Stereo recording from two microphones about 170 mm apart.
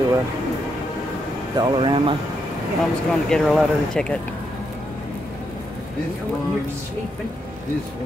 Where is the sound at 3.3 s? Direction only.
5° left (ahead or behind).